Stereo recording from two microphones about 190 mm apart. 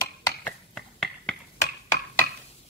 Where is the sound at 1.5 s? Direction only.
15° left (ahead or behind).